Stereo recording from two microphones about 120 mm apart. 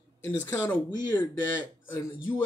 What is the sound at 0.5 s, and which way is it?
Speech, 15° left (ahead or behind).